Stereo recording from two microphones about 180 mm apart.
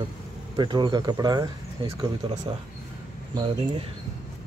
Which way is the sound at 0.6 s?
25° right (ahead or behind).